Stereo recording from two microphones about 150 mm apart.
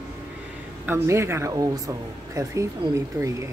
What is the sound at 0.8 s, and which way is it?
Speech, 15° right (ahead or behind).